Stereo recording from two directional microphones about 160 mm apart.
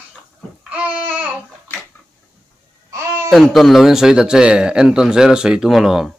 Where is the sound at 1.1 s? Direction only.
10° right (ahead or behind).